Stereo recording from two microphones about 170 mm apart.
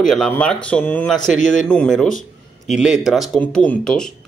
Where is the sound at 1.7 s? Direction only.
5° left (ahead or behind).